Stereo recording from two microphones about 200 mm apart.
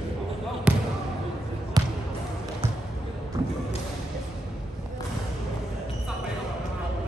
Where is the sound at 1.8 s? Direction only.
20° right (ahead or behind).